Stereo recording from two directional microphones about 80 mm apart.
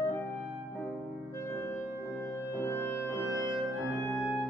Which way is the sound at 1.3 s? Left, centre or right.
Left.